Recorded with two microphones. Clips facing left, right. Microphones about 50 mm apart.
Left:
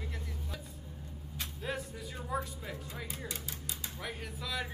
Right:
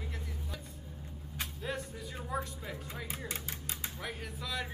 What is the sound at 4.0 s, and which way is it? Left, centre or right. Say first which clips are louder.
Speech: left 2 dB; centre.